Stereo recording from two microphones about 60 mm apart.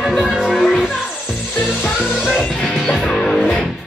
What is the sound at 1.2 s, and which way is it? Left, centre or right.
Music, centre.